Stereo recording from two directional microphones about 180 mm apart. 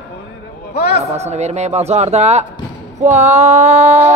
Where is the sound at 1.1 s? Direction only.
40° right (ahead or behind).